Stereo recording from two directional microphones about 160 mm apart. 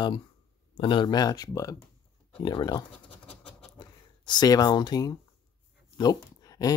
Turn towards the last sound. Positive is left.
turn(degrees=25)  # may be behind; listen again after turning